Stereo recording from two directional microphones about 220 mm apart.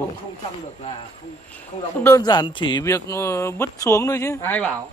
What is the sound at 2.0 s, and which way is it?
Speech, 15° left (ahead or behind).